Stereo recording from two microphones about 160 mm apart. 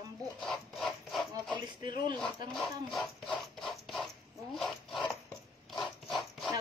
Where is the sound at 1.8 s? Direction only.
30° right (ahead or behind).